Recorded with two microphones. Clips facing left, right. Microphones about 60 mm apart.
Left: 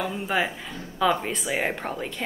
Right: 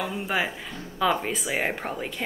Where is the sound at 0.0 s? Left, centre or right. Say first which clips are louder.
Left 1 dB; centre.